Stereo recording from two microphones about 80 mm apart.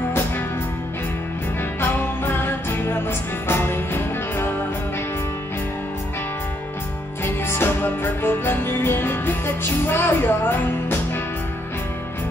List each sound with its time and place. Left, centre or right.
1.8 s music: left
7.4 s music: left